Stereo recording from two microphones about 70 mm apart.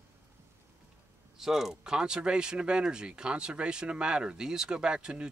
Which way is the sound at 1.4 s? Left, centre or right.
Centre.